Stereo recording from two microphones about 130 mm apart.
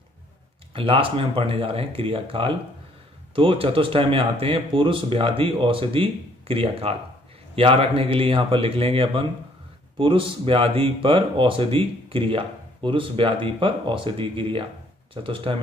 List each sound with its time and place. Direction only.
0.7 s speech: 45° right (ahead or behind)